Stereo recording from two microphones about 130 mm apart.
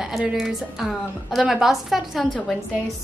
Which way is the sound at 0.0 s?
5° right (ahead or behind).